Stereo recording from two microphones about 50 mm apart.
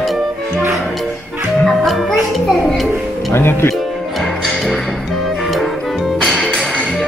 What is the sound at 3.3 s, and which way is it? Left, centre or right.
Speech, left.